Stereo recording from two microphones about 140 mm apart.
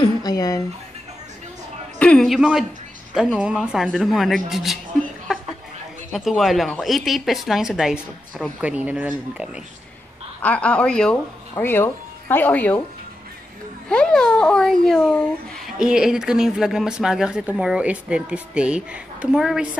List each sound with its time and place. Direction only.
0.0 s a sound: 30° left (ahead or behind)
2.0 s speech: 5° left (ahead or behind)
6.1 s speech: centre (ahead or behind)
10.4 s a woman's voice: 10° left (ahead or behind)
13.8 s speech: 5° left (ahead or behind)